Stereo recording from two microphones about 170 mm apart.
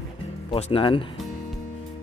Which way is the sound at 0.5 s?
35° left (ahead or behind).